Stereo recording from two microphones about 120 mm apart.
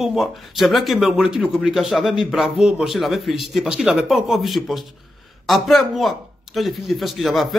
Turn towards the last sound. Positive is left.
turn(degrees=0)  # may be behind; listen again after turning